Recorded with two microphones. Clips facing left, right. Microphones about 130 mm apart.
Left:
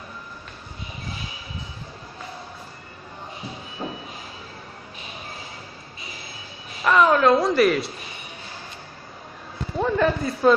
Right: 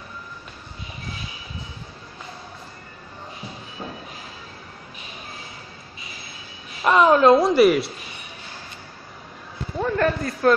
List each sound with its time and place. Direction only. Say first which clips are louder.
3.8 s train: left 3 dB; 20° left (ahead or behind)
6.8 s a woman's voice: right 2 dB; 25° right (ahead or behind)
9.8 s a sound: left 1 dB; 10° left (ahead or behind)